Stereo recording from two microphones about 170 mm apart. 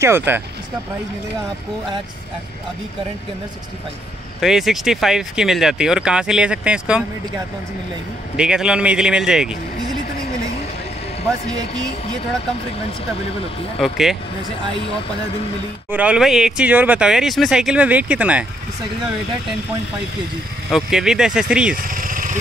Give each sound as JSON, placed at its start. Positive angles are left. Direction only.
{"t": 0.0, "sound": "speech", "side_deg": -15}
{"t": 4.4, "sound": "speech", "side_deg": 0}
{"t": 8.4, "sound": "speech", "side_deg": -5}
{"t": 13.7, "sound": "speech", "side_deg": 0}
{"t": 15.9, "sound": "speech", "side_deg": -10}
{"t": 20.7, "sound": "speech", "side_deg": -5}
{"t": 21.8, "sound": "vehicle", "side_deg": -55}